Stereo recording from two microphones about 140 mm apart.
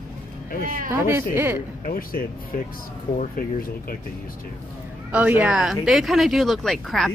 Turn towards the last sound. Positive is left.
turn(degrees=0)  # may be behind; listen again after turning